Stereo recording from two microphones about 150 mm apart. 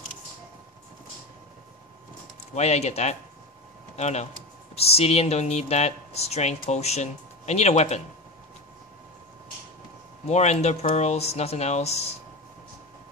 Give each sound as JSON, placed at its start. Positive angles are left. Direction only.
{"t": 2.5, "sound": "speech", "side_deg": 45}
{"t": 10.2, "sound": "speech", "side_deg": 50}